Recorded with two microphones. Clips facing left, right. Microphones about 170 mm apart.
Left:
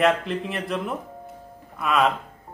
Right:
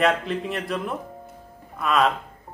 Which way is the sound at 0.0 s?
Centre (ahead or behind).